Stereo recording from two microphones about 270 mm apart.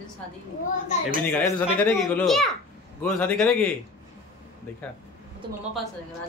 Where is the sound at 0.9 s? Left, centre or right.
Left.